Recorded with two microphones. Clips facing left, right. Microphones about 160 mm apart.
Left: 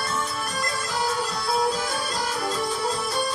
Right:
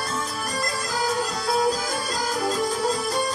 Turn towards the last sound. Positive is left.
turn(degrees=-40)  # may be behind; listen again after turning